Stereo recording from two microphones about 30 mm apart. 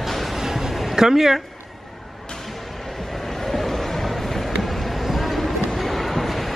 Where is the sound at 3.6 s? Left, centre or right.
Centre.